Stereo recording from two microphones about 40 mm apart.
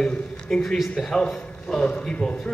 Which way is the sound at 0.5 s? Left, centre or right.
Centre.